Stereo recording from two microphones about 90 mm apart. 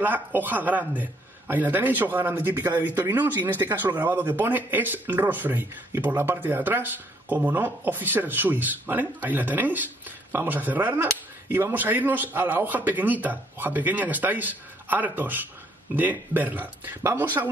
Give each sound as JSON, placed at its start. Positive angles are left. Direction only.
{"t": 0.0, "sound": "a man's voice", "side_deg": -20}